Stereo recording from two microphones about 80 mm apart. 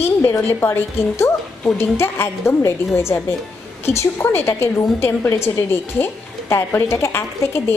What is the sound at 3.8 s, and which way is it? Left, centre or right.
A woman's voice, left.